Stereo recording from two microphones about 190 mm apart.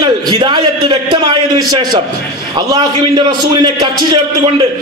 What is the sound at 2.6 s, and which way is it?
A man's voice, 25° right (ahead or behind).